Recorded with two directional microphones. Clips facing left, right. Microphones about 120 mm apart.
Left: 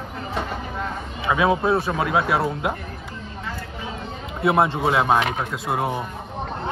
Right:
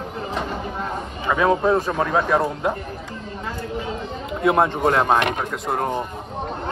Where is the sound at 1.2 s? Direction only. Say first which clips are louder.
Right 1 dB; 10° left (ahead or behind).